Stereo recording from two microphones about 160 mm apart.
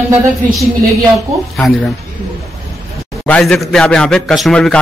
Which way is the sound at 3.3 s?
5° left (ahead or behind).